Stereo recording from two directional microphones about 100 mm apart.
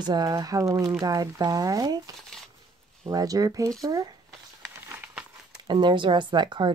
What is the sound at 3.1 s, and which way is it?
Speech, 35° right (ahead or behind).